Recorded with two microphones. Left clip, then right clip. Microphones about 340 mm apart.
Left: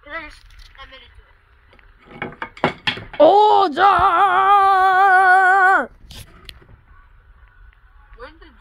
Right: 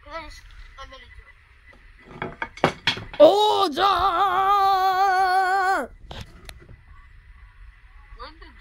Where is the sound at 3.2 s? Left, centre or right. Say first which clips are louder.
Left 4 dB; centre.